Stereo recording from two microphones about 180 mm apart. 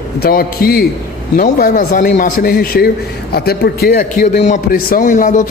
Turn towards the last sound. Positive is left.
turn(degrees=45)  # may be behind; listen again after turning